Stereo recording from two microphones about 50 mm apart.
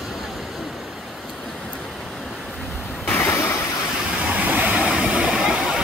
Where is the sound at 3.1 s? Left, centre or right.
Left.